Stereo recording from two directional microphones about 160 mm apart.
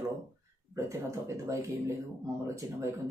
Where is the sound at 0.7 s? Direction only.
20° right (ahead or behind).